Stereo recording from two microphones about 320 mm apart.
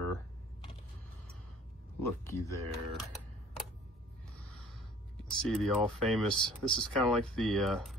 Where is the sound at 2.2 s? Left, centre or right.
Centre.